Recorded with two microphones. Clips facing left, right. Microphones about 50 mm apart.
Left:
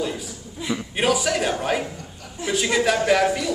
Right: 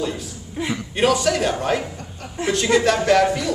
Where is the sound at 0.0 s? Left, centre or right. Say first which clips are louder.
Right 1 dB; centre.